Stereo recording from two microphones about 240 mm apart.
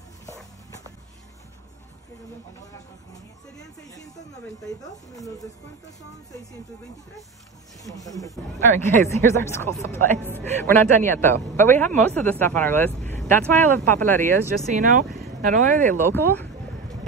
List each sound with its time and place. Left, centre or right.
4.8 s speech: centre
7.8 s speech: centre
14.7 s speech: right
16.0 s speech: centre